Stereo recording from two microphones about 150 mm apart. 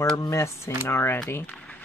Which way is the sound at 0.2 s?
20° left (ahead or behind).